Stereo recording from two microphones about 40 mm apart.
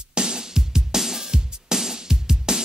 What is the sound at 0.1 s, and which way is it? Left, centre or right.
Music, right.